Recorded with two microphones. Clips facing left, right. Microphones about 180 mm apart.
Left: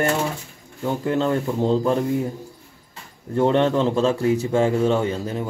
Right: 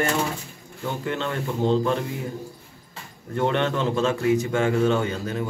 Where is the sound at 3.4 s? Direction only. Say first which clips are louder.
Left 5 dB; 35° left (ahead or behind).